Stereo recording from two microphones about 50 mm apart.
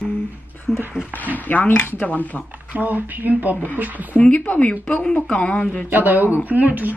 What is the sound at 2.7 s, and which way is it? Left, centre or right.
Speech, right.